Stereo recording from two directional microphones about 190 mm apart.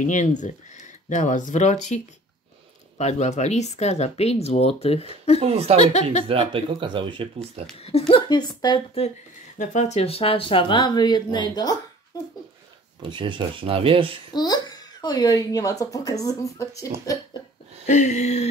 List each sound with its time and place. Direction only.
0.0 s speech: 40° left (ahead or behind)
3.0 s speech: 35° left (ahead or behind)
5.4 s speech: 30° right (ahead or behind)
8.1 s a child's voice: 20° left (ahead or behind)
9.6 s a child's voice: 40° left (ahead or behind); by 11.7 s 20° left (ahead or behind)
13.1 s speech: 25° right (ahead or behind)
14.3 s a child's voice: 20° left (ahead or behind)
17.8 s speech: 40° left (ahead or behind)